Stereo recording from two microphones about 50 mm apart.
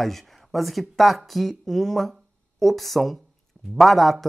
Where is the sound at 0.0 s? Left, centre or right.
Centre.